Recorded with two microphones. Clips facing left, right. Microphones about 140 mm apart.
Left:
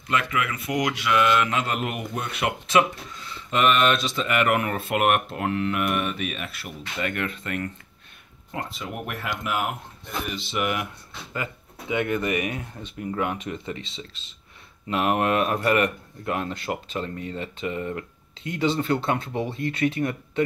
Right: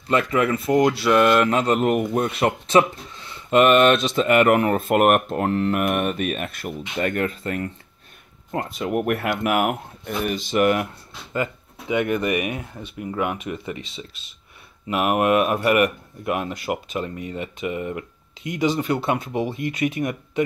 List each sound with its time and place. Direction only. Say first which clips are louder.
0.1 s speech: right 6 dB; 40° right (ahead or behind)
8.5 s speech: right 7 dB; 50° right (ahead or behind)
11.9 s speech: right 3 dB; 15° right (ahead or behind)